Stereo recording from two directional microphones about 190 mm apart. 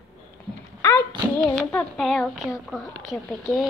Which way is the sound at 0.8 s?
15° left (ahead or behind).